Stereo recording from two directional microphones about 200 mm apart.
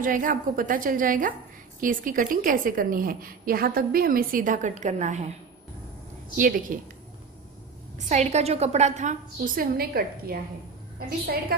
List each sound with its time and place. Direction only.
0.0 s a woman's voice: 40° right (ahead or behind)
6.3 s a woman's voice: 40° right (ahead or behind)
8.1 s a woman's voice: 35° right (ahead or behind); by 10.3 s 50° right (ahead or behind)